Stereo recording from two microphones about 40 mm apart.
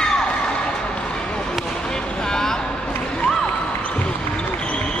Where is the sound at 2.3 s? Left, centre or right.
Centre.